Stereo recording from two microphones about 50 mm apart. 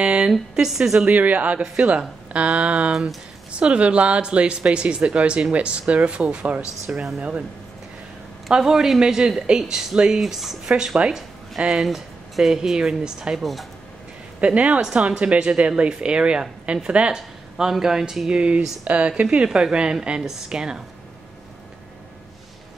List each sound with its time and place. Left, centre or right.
0.0 s a sound: right
0.3 s speech: centre
1.0 s speech: right
8.5 s speech: centre
13.4 s speech: centre
14.4 s speech: right
17.1 s speech: centre
18.3 s speech: right